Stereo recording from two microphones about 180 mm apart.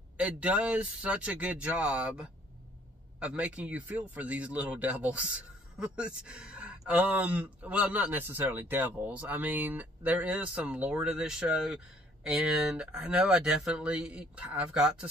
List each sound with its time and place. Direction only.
0.2 s speech: 5° right (ahead or behind)